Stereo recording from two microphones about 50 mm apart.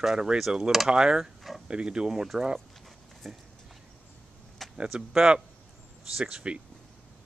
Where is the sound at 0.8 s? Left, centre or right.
Centre.